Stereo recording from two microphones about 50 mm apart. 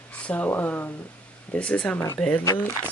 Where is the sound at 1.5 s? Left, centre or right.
Left.